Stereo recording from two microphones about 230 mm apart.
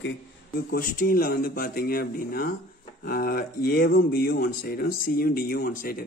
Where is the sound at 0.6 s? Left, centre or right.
Left.